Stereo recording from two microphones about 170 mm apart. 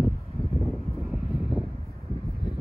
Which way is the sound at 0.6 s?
Centre (ahead or behind).